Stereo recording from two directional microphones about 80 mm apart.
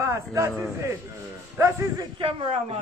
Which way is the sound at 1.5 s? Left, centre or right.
Right.